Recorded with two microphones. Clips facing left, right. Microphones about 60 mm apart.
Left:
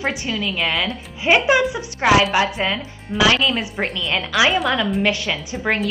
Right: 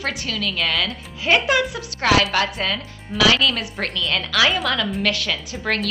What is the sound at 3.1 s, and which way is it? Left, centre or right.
Speech, centre.